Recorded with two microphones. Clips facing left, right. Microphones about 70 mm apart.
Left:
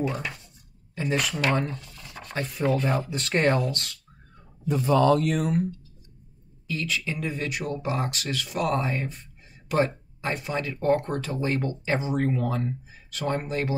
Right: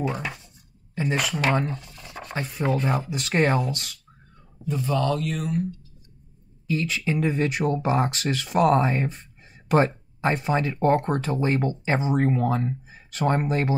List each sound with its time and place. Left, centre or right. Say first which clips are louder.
0.0 s speech: right 1 dB; centre
1.5 s a sound: right 2 dB; centre
2.4 s speech: even; centre
4.6 s speech: left 4 dB; centre
6.7 s speech: right 5 dB; right